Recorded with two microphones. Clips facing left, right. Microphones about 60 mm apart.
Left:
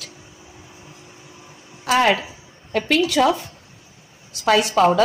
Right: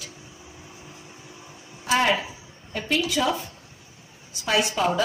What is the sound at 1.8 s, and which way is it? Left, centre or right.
Speech, left.